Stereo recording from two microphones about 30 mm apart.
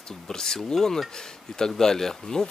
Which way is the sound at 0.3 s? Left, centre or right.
Centre.